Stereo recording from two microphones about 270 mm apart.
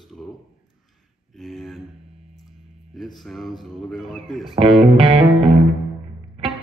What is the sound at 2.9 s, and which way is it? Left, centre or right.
Speech, centre.